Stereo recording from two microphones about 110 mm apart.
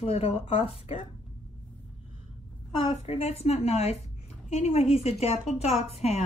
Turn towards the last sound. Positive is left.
turn(degrees=75)  # may be behind; listen again after turning